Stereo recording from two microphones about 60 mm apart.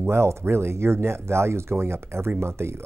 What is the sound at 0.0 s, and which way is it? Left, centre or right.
Speech, right.